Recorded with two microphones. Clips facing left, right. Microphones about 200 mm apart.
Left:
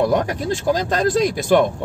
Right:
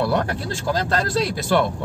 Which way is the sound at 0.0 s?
15° left (ahead or behind).